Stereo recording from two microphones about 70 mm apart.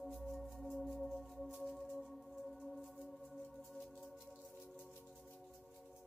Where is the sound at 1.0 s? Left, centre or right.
Centre.